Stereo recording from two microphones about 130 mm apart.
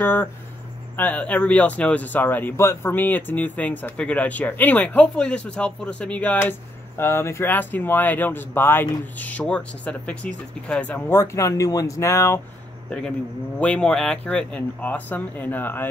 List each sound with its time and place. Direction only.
0.0 s speech: 15° left (ahead or behind)
13.6 s speech: 5° left (ahead or behind)